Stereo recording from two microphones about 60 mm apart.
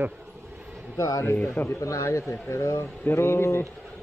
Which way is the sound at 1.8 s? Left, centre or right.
Left.